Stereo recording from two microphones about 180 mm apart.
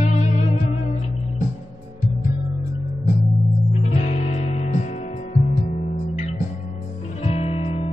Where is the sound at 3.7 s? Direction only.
40° left (ahead or behind).